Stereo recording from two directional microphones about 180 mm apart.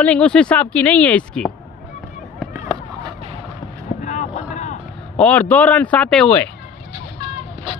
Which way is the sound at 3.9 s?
40° left (ahead or behind).